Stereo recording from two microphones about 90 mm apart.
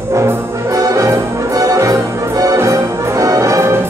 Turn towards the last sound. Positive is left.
turn(degrees=-30)  # may be behind; listen again after turning